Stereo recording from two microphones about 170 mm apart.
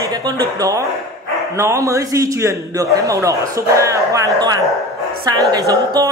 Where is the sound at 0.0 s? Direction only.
20° right (ahead or behind).